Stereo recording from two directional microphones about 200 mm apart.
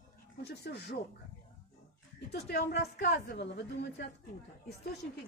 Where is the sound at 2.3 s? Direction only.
55° left (ahead or behind).